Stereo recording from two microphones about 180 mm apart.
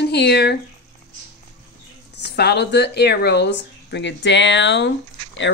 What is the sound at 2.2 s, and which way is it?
Speech, 65° left (ahead or behind).